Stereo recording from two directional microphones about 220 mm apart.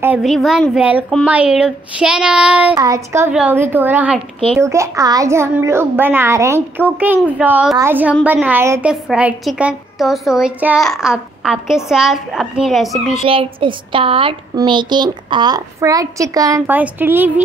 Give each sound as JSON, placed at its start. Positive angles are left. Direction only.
{"t": 0.0, "sound": "a woman's voice", "side_deg": -5}
{"t": 13.2, "sound": "speech", "side_deg": -25}